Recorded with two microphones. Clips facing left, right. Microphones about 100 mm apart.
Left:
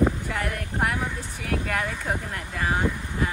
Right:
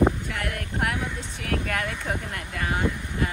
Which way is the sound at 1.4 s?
10° left (ahead or behind).